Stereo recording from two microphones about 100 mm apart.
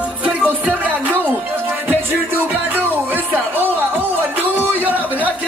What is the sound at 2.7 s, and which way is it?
Music, 20° right (ahead or behind).